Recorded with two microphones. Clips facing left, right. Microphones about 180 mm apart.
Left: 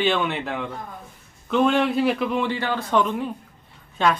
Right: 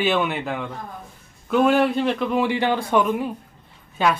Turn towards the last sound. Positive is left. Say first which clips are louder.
# even
turn(degrees=-5)  # may be behind; listen again after turning